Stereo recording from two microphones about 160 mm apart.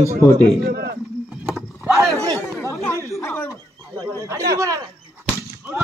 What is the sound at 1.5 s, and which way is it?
Vehicle, centre (ahead or behind).